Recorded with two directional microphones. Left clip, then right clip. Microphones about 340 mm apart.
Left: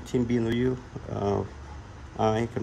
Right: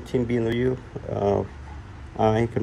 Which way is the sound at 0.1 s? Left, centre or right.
Centre.